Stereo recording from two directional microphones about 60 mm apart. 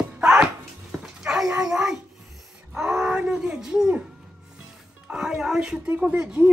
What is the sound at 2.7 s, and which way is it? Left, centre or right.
Wail, centre.